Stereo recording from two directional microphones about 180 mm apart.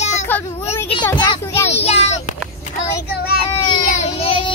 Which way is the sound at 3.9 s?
35° left (ahead or behind).